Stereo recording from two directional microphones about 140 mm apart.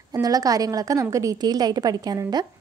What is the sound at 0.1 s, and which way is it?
Speech, 25° right (ahead or behind).